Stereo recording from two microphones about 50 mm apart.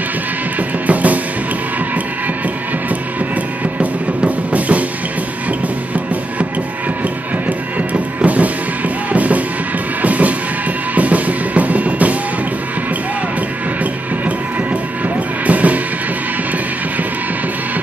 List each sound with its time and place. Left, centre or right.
0.8 s music: right
3.8 s music: right
7.4 s music: right
15.4 s music: right